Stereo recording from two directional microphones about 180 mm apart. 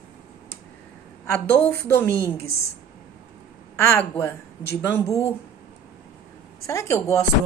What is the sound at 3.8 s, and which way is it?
Speech, 15° left (ahead or behind).